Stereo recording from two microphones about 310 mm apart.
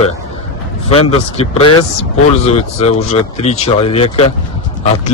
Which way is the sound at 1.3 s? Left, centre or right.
Centre.